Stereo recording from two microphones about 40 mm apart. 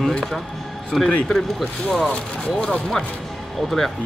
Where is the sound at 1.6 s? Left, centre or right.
Centre.